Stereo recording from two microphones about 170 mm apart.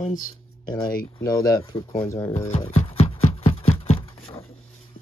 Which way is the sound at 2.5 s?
35° left (ahead or behind).